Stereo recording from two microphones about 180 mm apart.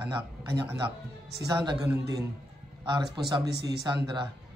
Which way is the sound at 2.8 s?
25° right (ahead or behind).